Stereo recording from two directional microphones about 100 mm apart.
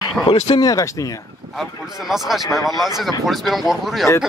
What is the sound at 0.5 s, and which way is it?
Speech, 40° left (ahead or behind).